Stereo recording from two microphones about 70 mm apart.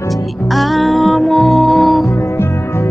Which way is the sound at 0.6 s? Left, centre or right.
Centre.